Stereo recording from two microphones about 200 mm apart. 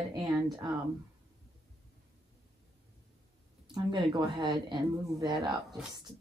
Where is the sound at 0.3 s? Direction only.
Centre (ahead or behind).